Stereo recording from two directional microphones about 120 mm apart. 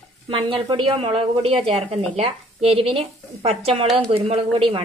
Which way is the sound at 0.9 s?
50° right (ahead or behind).